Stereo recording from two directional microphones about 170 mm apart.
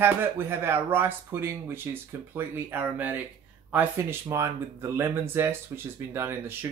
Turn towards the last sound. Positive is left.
turn(degrees=-15)  # may be behind; listen again after turning